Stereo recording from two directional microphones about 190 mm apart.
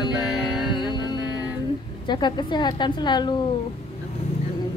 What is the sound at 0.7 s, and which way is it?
Music, 25° left (ahead or behind).